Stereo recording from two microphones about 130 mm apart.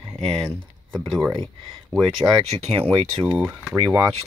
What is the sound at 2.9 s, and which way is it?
Speech, 40° right (ahead or behind).